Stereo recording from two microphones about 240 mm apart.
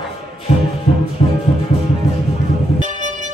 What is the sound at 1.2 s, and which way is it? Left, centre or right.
Music, left.